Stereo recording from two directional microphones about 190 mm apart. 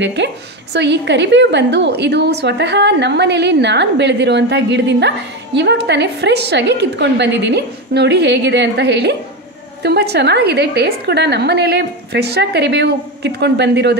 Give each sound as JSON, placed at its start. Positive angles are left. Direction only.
{"t": 0.0, "sound": "a woman's voice", "side_deg": -65}